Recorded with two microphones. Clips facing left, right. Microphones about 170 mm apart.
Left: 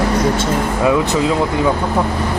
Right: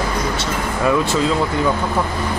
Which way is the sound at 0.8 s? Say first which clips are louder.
Left 1 dB; 15° left (ahead or behind).